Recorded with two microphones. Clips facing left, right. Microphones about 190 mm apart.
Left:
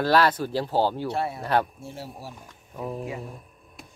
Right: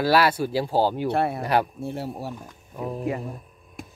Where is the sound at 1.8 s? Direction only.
60° right (ahead or behind).